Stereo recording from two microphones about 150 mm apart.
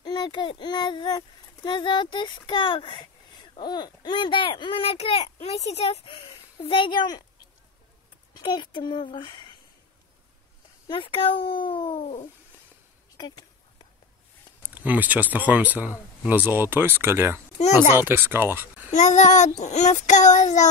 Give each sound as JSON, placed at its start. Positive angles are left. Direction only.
{"t": 0.0, "sound": "a child's voice", "side_deg": 30}
{"t": 8.4, "sound": "speech", "side_deg": 30}
{"t": 10.9, "sound": "speech", "side_deg": 35}
{"t": 12.0, "sound": "child singing", "side_deg": 50}
{"t": 14.6, "sound": "speech", "side_deg": -10}
{"t": 18.9, "sound": "child singing", "side_deg": 50}